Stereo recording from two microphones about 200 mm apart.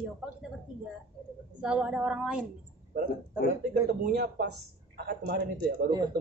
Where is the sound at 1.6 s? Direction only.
5° right (ahead or behind).